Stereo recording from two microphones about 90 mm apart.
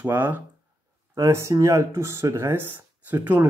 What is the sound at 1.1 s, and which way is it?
Speech, 30° right (ahead or behind).